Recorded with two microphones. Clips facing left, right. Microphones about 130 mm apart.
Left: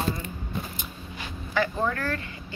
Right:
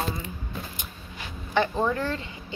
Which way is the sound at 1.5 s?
20° right (ahead or behind).